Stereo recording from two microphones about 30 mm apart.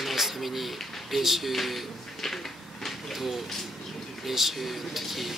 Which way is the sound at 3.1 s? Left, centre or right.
Centre.